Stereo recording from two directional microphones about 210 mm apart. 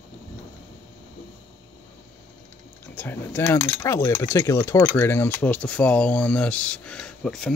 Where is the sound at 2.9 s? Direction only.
10° left (ahead or behind).